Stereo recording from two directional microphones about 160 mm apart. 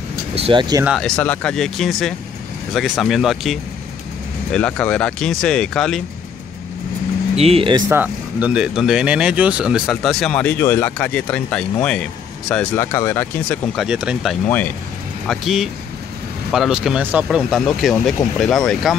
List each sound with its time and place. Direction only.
0.4 s speech: 30° right (ahead or behind)
0.8 s speech: centre (ahead or behind)
7.3 s speech: 40° right (ahead or behind)
7.9 s speech: 10° right (ahead or behind); by 12.6 s 5° left (ahead or behind)
12.7 s speech: 15° left (ahead or behind)
13.7 s speech: 5° right (ahead or behind)